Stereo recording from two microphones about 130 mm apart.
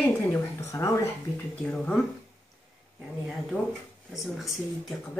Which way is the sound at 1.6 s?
10° left (ahead or behind).